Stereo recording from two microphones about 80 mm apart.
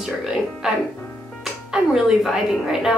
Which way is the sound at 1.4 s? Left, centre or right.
Centre.